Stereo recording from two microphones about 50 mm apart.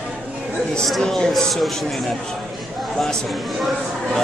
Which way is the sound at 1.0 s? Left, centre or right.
Centre.